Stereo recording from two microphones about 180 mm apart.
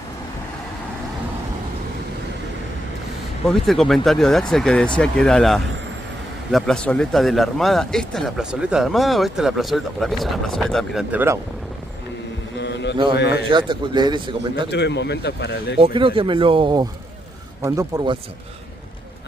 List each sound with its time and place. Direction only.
3.4 s speech: centre (ahead or behind)
11.1 s speech: 10° right (ahead or behind)
12.5 s mantra: 70° left (ahead or behind)
13.1 s speech: 70° left (ahead or behind)
13.5 s speech: 25° right (ahead or behind)
14.7 s speech: 70° left (ahead or behind)
15.8 s speech: 30° right (ahead or behind)
17.6 s speech: 15° right (ahead or behind)